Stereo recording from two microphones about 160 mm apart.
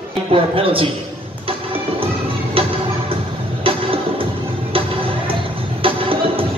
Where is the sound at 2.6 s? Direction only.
35° right (ahead or behind).